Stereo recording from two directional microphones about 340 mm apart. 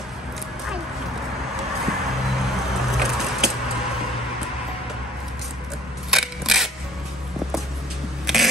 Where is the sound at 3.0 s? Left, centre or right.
Centre.